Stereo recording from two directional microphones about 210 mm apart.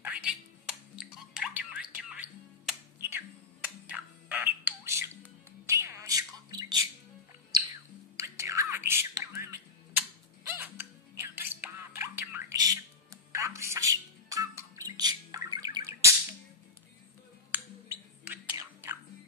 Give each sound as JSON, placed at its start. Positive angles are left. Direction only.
{"t": 0.0, "sound": "music", "side_deg": -5}
{"t": 5.7, "sound": "a sound", "side_deg": -15}
{"t": 8.2, "sound": "music", "side_deg": -15}
{"t": 17.5, "sound": "finger snapping", "side_deg": -10}